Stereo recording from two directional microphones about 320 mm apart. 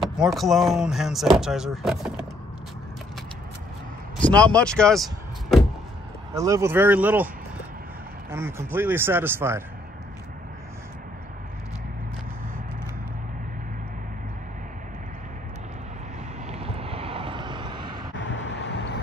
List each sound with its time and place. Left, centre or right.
0.0 s speech: centre
4.2 s speech: centre
6.3 s speech: centre
8.3 s speech: centre
16.4 s vehicle: centre
18.1 s vehicle: left